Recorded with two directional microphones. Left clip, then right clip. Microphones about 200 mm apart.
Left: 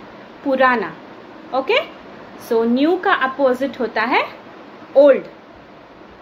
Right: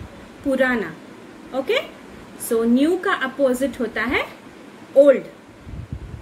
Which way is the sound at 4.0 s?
35° left (ahead or behind).